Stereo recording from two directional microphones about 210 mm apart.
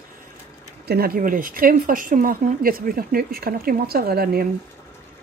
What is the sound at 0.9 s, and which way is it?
Speech, 45° right (ahead or behind).